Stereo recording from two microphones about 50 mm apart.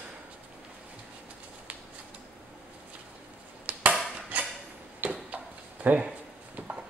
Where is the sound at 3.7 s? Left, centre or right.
Right.